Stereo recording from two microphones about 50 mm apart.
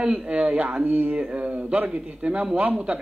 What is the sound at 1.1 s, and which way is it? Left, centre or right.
A man's voice, right.